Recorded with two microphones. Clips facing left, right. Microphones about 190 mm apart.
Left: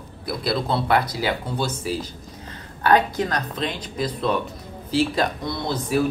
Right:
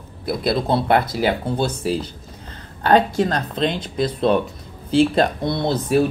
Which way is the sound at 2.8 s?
25° right (ahead or behind).